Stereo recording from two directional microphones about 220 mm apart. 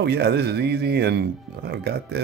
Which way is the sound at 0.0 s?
50° right (ahead or behind).